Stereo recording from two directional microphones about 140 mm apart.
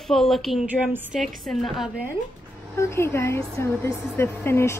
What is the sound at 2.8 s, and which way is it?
A woman's voice, 20° left (ahead or behind).